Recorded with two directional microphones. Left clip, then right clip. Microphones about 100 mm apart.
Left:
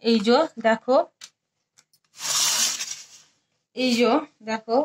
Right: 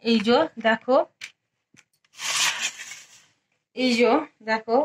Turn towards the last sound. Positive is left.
turn(degrees=15)  # may be behind; listen again after turning